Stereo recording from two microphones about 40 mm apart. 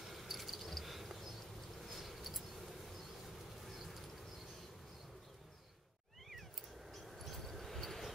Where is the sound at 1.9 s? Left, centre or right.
Centre.